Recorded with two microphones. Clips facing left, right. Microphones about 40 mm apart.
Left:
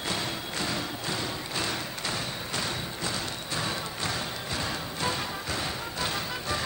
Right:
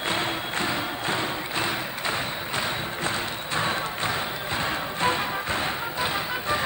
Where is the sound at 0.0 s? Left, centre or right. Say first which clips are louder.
Right 5 dB; right.